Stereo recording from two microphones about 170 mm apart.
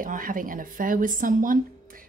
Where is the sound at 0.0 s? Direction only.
55° right (ahead or behind).